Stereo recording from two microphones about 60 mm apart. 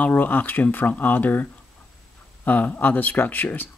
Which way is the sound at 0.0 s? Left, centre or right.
Left.